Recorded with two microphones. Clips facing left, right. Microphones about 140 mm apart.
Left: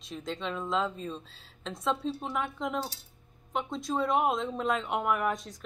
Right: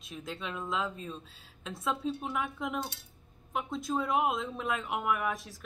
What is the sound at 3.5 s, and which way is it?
A woman's voice, 5° right (ahead or behind).